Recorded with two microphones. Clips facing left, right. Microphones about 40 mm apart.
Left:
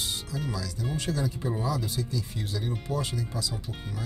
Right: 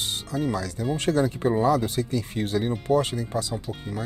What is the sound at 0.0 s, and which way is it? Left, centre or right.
Speech, right.